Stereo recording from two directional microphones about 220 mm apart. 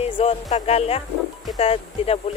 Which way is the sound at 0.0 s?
25° left (ahead or behind).